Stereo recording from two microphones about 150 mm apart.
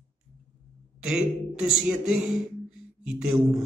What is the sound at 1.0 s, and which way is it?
A man's voice, 5° right (ahead or behind).